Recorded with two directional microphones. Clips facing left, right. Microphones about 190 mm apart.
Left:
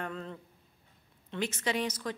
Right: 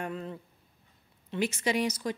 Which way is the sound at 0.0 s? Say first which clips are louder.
Right 3 dB; 10° right (ahead or behind).